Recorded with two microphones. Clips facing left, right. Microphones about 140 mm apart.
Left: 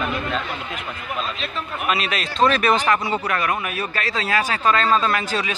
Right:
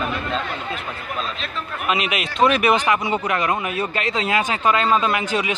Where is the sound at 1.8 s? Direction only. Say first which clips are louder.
Right 1 dB; 15° right (ahead or behind).